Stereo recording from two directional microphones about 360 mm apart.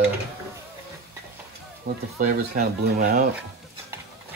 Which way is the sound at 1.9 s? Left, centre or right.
Right.